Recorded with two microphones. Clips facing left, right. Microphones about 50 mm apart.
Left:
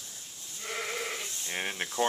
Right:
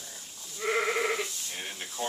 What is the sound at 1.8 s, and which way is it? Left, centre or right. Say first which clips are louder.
Speech: left 7 dB; left.